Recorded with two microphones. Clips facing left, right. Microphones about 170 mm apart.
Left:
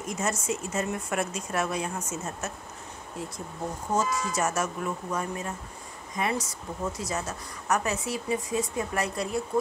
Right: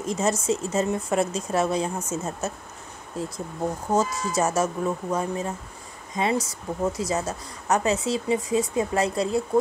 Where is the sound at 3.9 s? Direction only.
30° right (ahead or behind).